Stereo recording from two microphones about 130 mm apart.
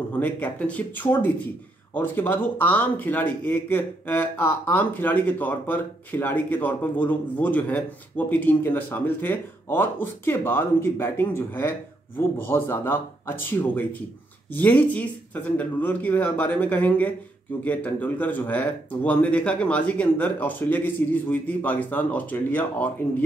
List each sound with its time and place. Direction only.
0.1 s speech: 10° left (ahead or behind)